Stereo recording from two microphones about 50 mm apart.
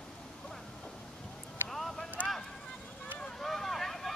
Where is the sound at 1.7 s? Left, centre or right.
Centre.